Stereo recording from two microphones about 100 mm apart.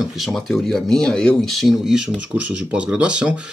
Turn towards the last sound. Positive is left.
turn(degrees=-10)  # may be behind; listen again after turning